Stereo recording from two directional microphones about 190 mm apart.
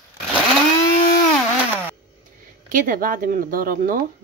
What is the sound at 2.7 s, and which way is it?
Speech, 45° right (ahead or behind).